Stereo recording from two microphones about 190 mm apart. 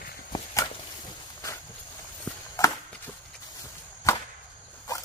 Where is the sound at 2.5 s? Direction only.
15° left (ahead or behind).